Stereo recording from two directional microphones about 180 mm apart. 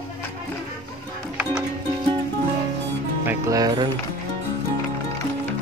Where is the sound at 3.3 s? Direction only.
20° right (ahead or behind).